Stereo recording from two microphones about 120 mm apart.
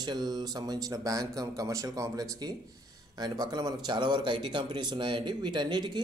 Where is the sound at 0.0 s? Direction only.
35° right (ahead or behind).